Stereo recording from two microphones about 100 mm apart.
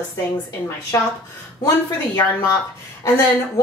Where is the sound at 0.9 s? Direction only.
30° left (ahead or behind).